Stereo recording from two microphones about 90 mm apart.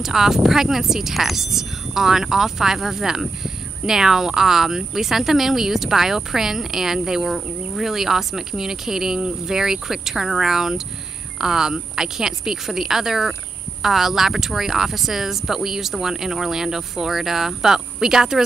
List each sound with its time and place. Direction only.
0.0 s speech: 5° right (ahead or behind)